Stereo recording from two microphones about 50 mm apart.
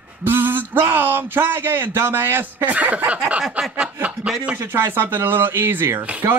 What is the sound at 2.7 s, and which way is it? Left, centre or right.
Speech, right.